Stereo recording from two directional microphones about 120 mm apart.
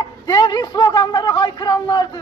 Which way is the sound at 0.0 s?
35° left (ahead or behind).